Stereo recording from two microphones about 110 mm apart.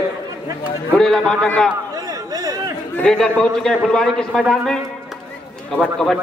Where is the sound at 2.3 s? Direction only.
35° right (ahead or behind).